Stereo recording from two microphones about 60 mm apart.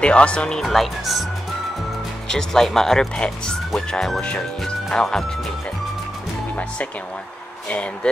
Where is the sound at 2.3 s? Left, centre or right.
Centre.